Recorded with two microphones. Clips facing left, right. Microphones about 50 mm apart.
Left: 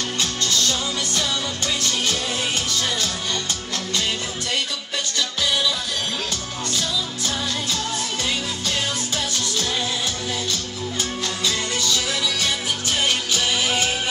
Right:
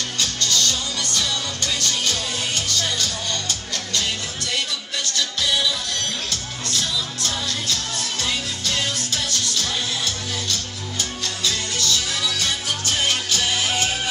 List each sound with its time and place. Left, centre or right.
0.2 s music: centre
7.2 s music: centre
11.0 s music: centre